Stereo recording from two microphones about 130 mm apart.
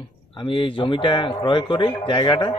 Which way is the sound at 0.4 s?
40° left (ahead or behind).